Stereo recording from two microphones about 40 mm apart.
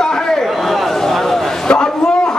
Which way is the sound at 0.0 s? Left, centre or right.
Centre.